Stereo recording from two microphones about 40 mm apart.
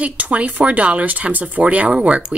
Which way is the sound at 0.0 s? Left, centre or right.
Right.